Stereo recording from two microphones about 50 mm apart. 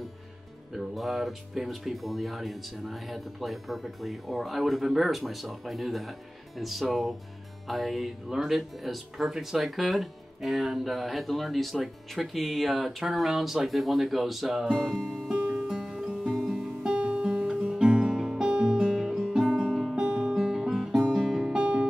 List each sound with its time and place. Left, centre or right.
0.7 s speech: centre
14.6 s music: centre
15.0 s music: centre
15.5 s music: centre
16.8 s guitar: centre
19.7 s music: centre
20.0 s guitar: centre
21.5 s music: right